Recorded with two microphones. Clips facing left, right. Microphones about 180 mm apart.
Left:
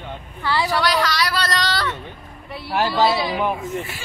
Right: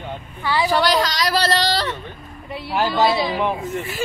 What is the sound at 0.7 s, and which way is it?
Speech, 30° right (ahead or behind).